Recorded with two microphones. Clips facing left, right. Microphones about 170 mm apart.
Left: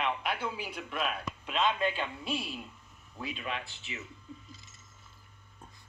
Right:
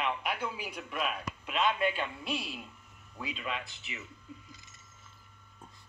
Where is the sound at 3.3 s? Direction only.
25° left (ahead or behind).